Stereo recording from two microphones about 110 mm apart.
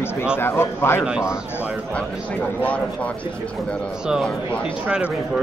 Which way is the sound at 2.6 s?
15° left (ahead or behind).